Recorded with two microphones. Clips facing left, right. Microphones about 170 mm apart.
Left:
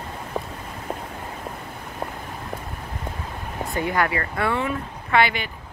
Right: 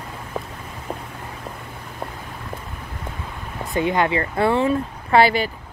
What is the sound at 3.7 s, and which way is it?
Speech, 20° right (ahead or behind).